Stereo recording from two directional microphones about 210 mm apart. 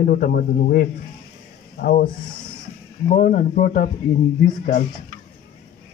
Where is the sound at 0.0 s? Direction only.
45° left (ahead or behind).